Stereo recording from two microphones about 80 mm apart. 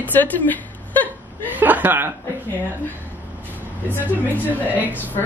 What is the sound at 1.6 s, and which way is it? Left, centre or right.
Chuckle, right.